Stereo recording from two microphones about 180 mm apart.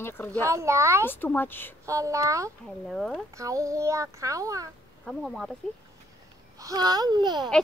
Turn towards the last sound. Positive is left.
turn(degrees=-25)  # may be behind; listen again after turning